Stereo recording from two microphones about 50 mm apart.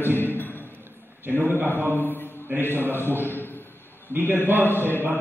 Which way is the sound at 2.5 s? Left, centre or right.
Right.